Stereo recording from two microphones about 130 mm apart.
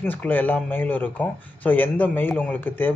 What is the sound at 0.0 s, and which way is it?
Speech, 15° left (ahead or behind).